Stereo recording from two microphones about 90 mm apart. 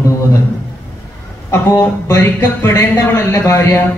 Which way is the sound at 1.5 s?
30° left (ahead or behind).